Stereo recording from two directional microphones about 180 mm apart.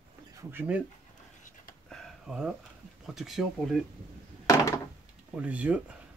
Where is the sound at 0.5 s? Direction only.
10° right (ahead or behind).